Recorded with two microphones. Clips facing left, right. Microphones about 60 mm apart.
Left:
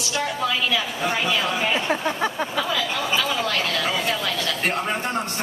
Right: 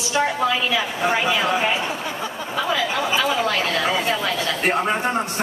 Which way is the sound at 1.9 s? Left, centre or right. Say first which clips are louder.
Left 4 dB; left.